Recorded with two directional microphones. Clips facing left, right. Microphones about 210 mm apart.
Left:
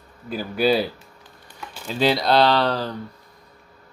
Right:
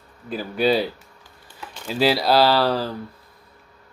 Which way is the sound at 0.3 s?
Centre (ahead or behind).